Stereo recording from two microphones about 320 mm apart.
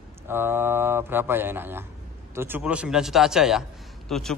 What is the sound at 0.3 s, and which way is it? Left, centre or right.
A man's voice, centre.